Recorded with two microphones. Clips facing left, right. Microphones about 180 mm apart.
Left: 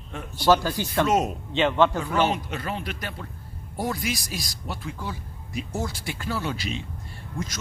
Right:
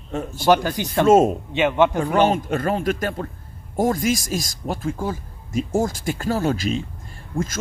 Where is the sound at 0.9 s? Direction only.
45° right (ahead or behind).